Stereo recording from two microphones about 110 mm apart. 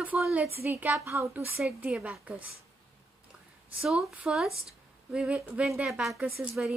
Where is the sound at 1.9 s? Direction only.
10° right (ahead or behind).